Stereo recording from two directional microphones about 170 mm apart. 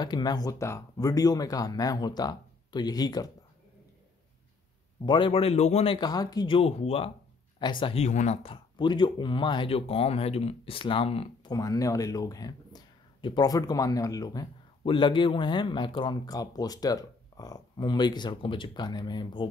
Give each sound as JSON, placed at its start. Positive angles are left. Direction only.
{"t": 0.0, "sound": "speech", "side_deg": 25}
{"t": 5.0, "sound": "speech", "side_deg": 30}
{"t": 5.9, "sound": "speech", "side_deg": 25}
{"t": 11.5, "sound": "speech", "side_deg": 20}